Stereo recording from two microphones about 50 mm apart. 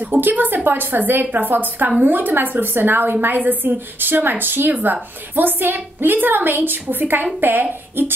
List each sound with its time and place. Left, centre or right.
0.0 s a woman's voice: right